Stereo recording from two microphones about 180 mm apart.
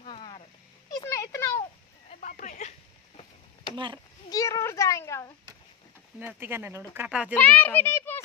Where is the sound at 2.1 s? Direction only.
45° left (ahead or behind).